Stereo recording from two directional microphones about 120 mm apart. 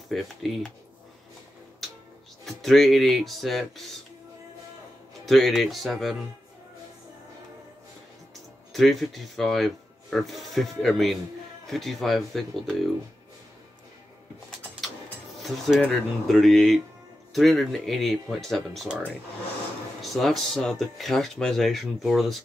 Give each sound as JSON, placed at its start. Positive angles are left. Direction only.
{"t": 0.1, "sound": "speech", "side_deg": 0}
{"t": 2.4, "sound": "speech", "side_deg": 0}
{"t": 5.2, "sound": "speech", "side_deg": 0}
{"t": 8.7, "sound": "speech", "side_deg": 0}
{"t": 14.8, "sound": "printer", "side_deg": 0}
{"t": 15.4, "sound": "speech", "side_deg": 0}